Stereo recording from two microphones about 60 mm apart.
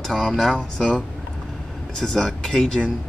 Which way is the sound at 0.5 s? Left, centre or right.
Centre.